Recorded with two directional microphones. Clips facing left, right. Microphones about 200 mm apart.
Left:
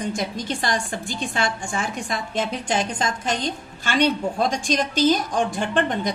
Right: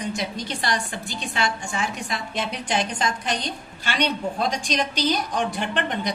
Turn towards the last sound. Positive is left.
turn(degrees=45)  # may be behind; listen again after turning